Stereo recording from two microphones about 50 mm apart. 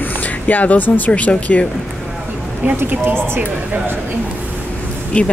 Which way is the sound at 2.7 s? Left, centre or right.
Right.